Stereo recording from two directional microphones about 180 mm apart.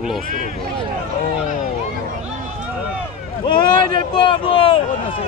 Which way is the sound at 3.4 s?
25° left (ahead or behind).